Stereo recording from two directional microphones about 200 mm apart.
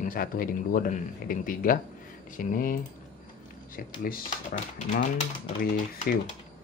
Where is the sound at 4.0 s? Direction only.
40° left (ahead or behind).